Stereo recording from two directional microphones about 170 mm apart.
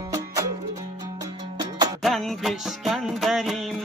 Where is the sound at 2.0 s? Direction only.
Centre (ahead or behind).